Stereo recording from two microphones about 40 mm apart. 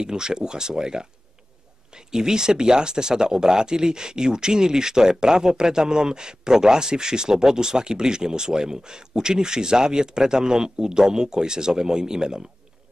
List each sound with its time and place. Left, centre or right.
0.0 s speech: centre